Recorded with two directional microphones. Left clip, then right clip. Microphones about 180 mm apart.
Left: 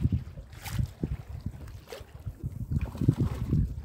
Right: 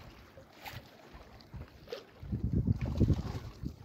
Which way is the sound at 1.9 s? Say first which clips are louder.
Even; 55° left (ahead or behind).